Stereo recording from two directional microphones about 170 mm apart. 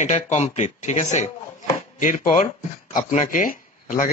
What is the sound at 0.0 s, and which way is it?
Speech, 45° left (ahead or behind).